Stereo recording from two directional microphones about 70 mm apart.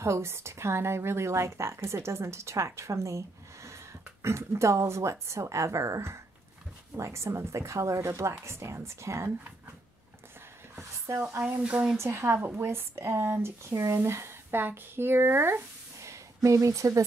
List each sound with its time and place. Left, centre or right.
0.0 s speech: right
11.4 s speech: centre
12.0 s speech: right